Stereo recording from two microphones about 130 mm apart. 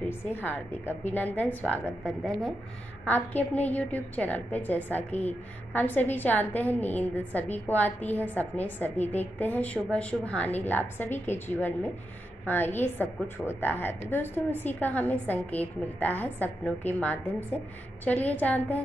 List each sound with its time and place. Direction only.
0.1 s a woman's voice: 15° left (ahead or behind)